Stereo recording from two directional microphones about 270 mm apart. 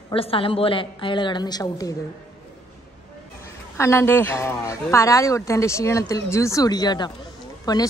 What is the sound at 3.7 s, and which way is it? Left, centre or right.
Speech, centre.